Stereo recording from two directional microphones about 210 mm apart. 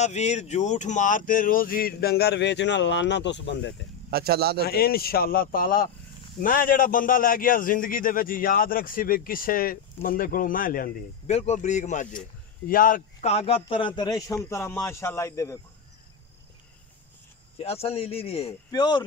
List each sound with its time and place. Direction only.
0.0 s speech: 30° left (ahead or behind); by 3.7 s 60° left (ahead or behind)
4.1 s speech: 50° right (ahead or behind)
4.6 s a man's voice: 45° left (ahead or behind); by 15.6 s 15° left (ahead or behind)
17.6 s speech: 30° left (ahead or behind)